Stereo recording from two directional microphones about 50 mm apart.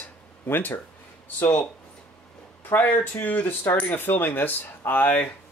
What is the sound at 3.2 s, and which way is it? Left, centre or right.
Speech, left.